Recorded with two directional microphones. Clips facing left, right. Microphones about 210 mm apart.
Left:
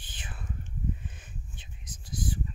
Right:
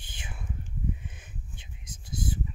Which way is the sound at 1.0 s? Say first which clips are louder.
Even; 15° right (ahead or behind).